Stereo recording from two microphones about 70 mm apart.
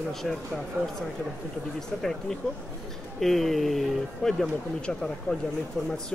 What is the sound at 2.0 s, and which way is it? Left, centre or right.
Speech, centre.